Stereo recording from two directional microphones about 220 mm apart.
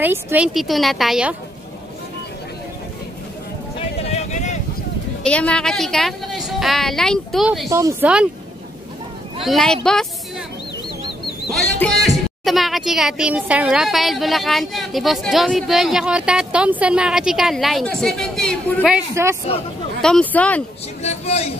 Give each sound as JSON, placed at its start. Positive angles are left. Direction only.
{"t": 0.0, "sound": "a woman's voice", "side_deg": -10}
{"t": 4.1, "sound": "a sound", "side_deg": 30}
{"t": 5.2, "sound": "a woman's voice", "side_deg": 5}
{"t": 9.4, "sound": "a woman's voice", "side_deg": 0}
{"t": 11.5, "sound": "a woman's voice", "side_deg": 0}
{"t": 20.0, "sound": "a woman's voice", "side_deg": 5}
{"t": 21.0, "sound": "a sound", "side_deg": 30}